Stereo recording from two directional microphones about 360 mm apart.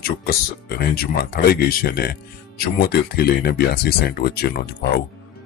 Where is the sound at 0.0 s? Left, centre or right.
Left.